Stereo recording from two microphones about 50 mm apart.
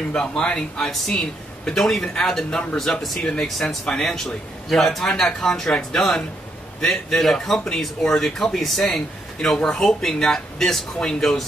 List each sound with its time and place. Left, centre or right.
0.1 s a man's voice: centre